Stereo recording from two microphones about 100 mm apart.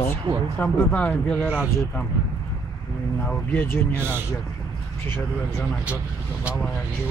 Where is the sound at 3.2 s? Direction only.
15° left (ahead or behind).